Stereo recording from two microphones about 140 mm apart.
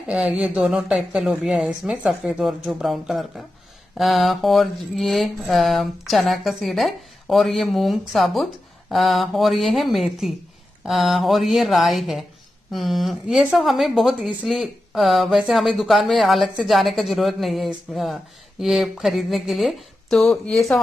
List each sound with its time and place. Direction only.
0.1 s a woman's voice: 10° right (ahead or behind)